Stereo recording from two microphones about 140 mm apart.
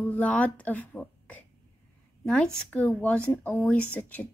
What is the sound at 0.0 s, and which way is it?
Speech, 10° left (ahead or behind).